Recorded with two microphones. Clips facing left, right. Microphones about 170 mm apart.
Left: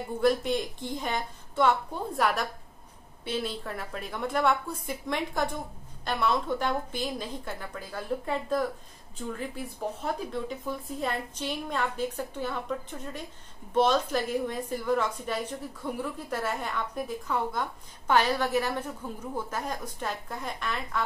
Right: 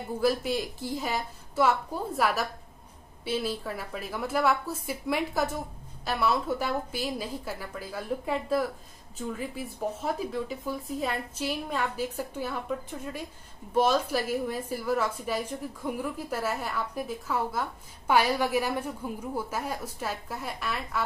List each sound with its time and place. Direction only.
0.2 s a woman's voice: 5° right (ahead or behind)